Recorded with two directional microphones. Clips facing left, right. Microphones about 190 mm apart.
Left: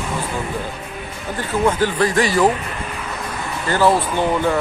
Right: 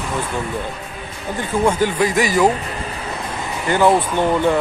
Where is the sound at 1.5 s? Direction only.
15° right (ahead or behind).